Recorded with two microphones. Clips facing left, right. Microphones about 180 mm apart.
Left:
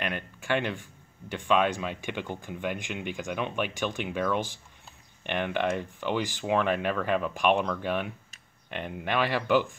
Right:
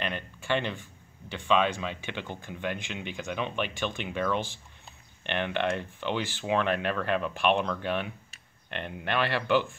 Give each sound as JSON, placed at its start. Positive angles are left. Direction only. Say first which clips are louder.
{"t": 0.0, "sound": "speech", "louder": "left 1 dB", "side_deg": 10}